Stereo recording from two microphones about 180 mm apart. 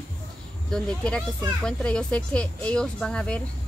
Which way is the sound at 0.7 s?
5° left (ahead or behind).